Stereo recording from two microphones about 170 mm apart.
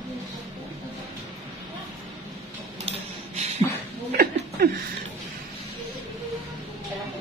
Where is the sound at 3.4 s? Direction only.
40° right (ahead or behind).